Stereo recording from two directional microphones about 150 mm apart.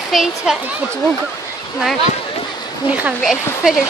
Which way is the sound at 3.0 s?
Centre (ahead or behind).